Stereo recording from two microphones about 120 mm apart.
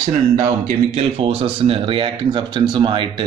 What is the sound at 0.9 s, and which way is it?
Speech, 55° right (ahead or behind).